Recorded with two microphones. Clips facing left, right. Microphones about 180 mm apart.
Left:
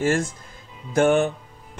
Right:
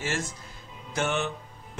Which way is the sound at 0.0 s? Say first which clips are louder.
Left 10 dB; 50° left (ahead or behind).